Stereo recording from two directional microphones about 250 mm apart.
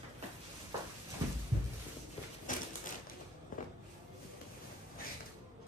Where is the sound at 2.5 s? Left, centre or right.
Left.